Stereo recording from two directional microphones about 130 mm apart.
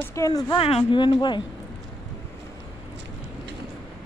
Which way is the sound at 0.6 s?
50° left (ahead or behind).